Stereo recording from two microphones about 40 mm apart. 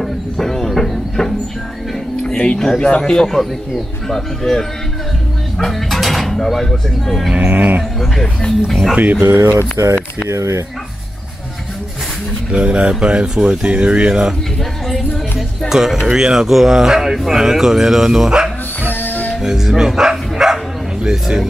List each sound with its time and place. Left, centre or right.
0.0 s a sound: centre
2.3 s speech: left
2.8 s speech: centre
3.3 s speech: centre
7.3 s speech: right
8.6 s speech: centre
9.2 s speech: right
12.4 s speech: right
13.7 s speech: right
15.7 s speech: centre
18.8 s music: left
19.4 s music: centre
21.0 s speech: centre